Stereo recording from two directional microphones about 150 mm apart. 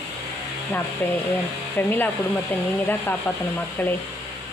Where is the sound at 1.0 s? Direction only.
15° left (ahead or behind).